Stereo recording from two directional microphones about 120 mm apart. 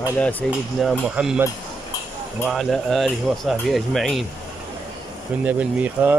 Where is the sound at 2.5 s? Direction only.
Centre (ahead or behind).